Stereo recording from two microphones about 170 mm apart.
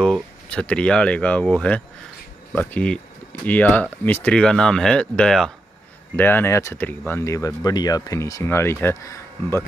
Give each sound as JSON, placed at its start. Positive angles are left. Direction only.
{"t": 0.0, "sound": "speech", "side_deg": 5}